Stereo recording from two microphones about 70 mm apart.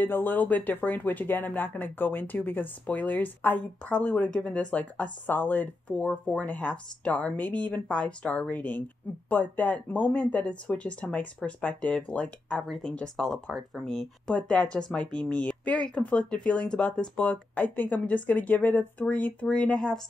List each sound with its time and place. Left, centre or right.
0.0 s speech: left
12.6 s speech: centre